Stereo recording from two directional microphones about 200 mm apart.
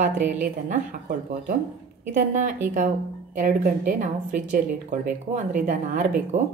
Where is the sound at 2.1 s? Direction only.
40° right (ahead or behind).